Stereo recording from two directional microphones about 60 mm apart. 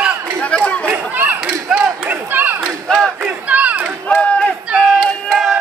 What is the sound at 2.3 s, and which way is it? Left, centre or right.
Battle cry, right.